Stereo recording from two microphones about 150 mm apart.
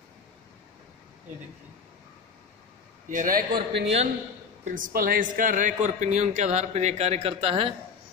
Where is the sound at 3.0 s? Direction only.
65° right (ahead or behind).